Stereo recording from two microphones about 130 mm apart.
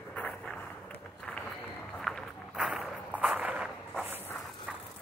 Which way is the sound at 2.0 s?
Centre (ahead or behind).